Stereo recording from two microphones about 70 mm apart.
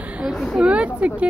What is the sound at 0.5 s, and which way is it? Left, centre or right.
Speech, centre.